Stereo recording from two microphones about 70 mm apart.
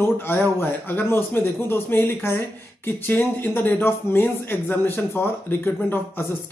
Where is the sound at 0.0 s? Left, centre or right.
Left.